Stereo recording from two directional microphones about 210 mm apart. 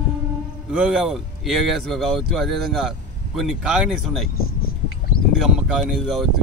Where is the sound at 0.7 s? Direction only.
5° right (ahead or behind).